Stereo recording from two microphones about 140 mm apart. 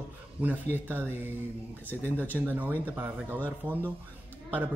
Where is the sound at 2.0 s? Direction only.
10° left (ahead or behind).